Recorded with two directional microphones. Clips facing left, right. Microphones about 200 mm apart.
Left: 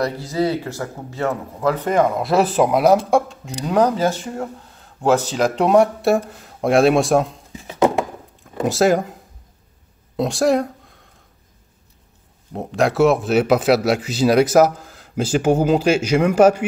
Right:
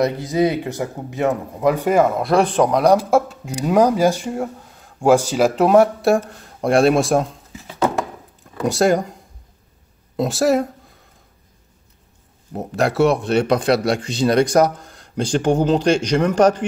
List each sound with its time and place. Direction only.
0.0 s speech: 20° right (ahead or behind); by 7.3 s centre (ahead or behind)
7.5 s a sound: 20° left (ahead or behind)
8.6 s speech: centre (ahead or behind)
12.5 s speech: centre (ahead or behind)